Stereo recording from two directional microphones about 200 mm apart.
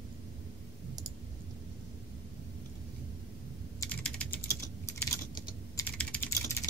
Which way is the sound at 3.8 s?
5° left (ahead or behind).